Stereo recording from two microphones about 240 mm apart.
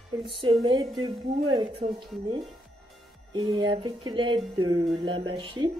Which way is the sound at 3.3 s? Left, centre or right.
Centre.